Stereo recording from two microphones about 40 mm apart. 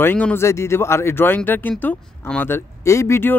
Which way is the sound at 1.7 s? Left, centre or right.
Left.